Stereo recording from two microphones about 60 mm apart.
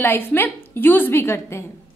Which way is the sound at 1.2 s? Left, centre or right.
Left.